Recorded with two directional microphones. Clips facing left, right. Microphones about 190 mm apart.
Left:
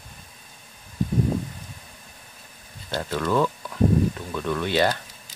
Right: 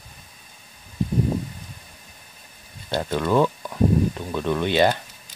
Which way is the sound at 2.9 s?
15° right (ahead or behind).